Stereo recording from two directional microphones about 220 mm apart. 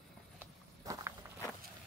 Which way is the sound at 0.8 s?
15° right (ahead or behind).